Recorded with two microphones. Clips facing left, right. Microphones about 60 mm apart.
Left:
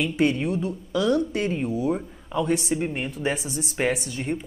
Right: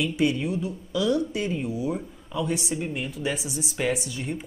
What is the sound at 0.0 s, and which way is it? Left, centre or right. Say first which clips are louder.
Speech: left 2 dB; left.